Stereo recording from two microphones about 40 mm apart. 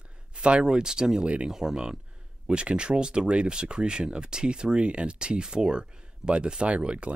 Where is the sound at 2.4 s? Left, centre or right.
Right.